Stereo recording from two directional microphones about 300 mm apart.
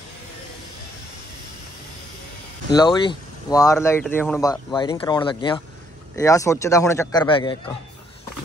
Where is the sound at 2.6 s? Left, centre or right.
Centre.